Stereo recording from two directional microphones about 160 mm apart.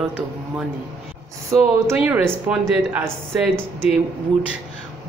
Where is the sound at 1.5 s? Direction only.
15° right (ahead or behind).